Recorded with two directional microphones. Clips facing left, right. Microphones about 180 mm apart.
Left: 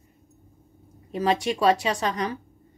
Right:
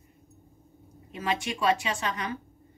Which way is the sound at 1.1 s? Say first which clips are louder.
Left 7 dB; 35° left (ahead or behind).